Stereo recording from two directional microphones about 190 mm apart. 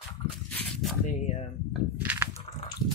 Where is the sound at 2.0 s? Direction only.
10° right (ahead or behind).